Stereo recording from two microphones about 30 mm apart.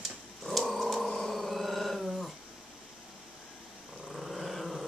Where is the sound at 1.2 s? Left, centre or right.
Centre.